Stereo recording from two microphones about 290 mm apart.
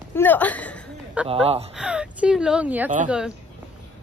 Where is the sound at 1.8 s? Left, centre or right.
Centre.